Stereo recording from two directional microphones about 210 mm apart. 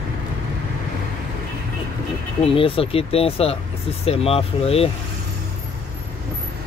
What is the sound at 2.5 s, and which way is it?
Speech, 25° left (ahead or behind).